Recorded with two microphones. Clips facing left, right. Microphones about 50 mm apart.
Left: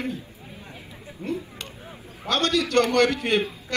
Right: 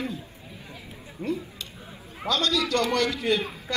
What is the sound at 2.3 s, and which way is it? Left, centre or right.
A man's voice, left.